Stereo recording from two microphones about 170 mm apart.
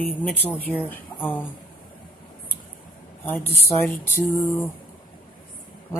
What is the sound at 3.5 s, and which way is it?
Speech, 15° left (ahead or behind).